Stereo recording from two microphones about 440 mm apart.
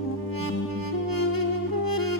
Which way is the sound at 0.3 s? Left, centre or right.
Left.